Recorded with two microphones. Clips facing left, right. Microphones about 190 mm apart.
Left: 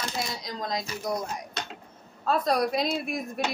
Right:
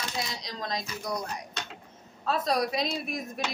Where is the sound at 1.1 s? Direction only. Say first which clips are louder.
Left 3 dB; 25° left (ahead or behind).